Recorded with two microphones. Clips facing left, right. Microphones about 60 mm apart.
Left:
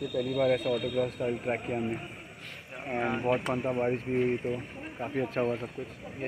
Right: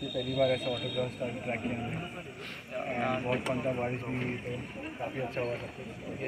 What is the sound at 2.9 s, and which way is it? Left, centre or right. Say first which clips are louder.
Speech: left 2 dB; left.